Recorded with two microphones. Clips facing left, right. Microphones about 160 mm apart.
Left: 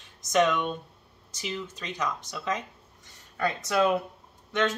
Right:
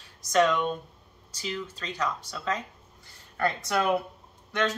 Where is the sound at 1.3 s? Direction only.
20° left (ahead or behind).